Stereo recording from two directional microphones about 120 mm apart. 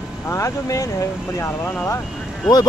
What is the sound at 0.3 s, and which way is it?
Speech, 25° left (ahead or behind).